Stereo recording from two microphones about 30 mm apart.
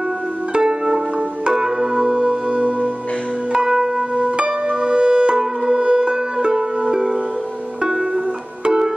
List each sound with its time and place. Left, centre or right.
0.6 s music: right
2.5 s music: right
3.5 s music: centre
4.4 s music: right
5.8 s music: right
6.0 s music: right